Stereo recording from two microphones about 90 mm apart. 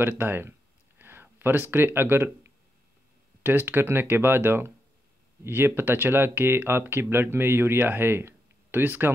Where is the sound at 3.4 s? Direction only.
25° right (ahead or behind).